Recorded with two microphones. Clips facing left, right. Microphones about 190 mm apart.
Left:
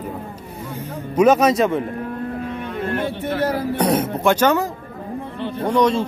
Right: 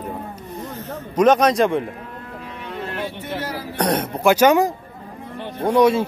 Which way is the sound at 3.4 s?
55° left (ahead or behind).